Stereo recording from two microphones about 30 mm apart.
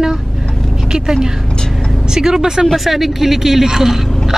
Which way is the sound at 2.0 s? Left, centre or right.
Centre.